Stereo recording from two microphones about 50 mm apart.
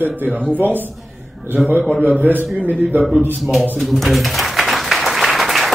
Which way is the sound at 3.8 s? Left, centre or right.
Centre.